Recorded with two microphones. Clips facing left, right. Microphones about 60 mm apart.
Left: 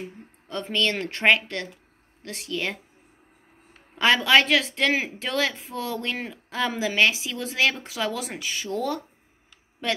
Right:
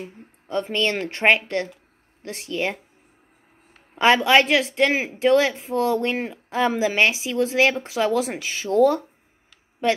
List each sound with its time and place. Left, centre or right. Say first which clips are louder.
0.5 s speech: right 3 dB; right
3.9 s speech: right 3 dB; right